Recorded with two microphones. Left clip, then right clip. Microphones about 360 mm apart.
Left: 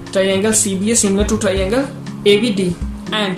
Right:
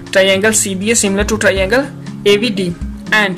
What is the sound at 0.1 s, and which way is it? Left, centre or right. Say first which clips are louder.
Speech: right 5 dB; right.